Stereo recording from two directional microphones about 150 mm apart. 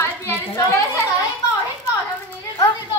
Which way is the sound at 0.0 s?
15° left (ahead or behind).